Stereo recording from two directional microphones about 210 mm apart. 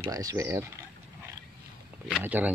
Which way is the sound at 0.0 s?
15° right (ahead or behind).